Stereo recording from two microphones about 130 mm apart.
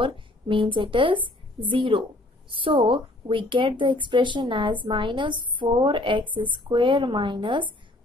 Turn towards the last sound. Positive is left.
turn(degrees=-40)  # may be behind; listen again after turning